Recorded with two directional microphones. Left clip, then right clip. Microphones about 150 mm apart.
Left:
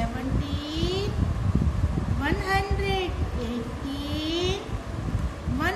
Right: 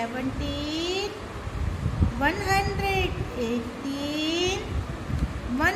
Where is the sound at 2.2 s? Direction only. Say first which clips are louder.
Right 2 dB; 45° right (ahead or behind).